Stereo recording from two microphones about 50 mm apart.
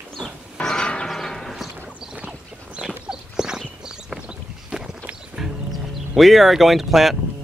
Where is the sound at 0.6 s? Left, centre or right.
Centre.